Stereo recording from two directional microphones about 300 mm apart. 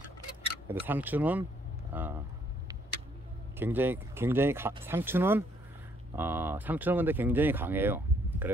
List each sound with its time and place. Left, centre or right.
0.8 s speech: centre
3.5 s speech: centre